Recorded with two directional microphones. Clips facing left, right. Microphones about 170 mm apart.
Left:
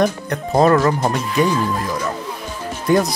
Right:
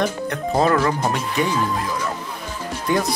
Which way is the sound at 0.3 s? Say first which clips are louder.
Left 4 dB; 45° left (ahead or behind).